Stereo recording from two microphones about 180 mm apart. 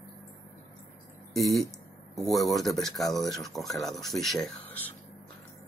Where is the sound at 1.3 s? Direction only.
Centre (ahead or behind).